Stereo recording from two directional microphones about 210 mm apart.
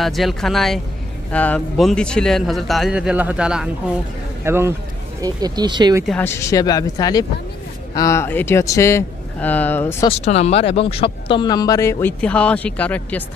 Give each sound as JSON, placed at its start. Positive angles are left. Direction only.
{"t": 0.0, "sound": "a man's voice", "side_deg": 0}
{"t": 6.0, "sound": "speech", "side_deg": 10}
{"t": 10.0, "sound": "speech", "side_deg": 30}